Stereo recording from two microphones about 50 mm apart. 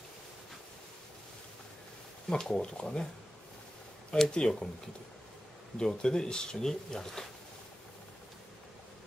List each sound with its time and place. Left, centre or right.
2.2 s speech: centre
4.3 s speech: centre
5.8 s speech: centre